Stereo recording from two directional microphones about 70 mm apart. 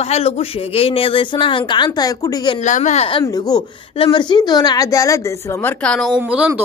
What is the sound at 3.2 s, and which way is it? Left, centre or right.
Speech, left.